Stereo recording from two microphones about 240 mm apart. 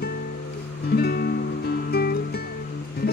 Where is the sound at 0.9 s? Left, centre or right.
Left.